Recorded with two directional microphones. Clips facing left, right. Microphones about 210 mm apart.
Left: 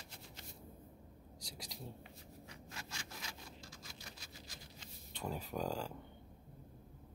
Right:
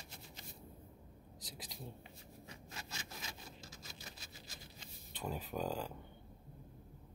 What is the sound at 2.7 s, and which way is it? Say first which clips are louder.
Zipper: right 1 dB; 20° right (ahead or behind).